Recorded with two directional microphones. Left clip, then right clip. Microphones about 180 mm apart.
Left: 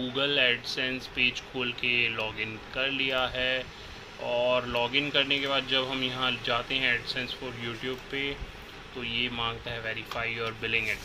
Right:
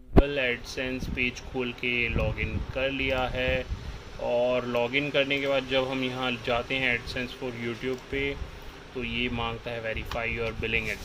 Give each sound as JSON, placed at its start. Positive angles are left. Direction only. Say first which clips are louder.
{"t": 0.2, "sound": "speech", "louder": "left 1 dB", "side_deg": -45}